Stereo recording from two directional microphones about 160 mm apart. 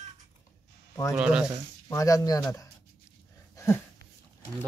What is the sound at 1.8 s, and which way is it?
Speech, 20° left (ahead or behind).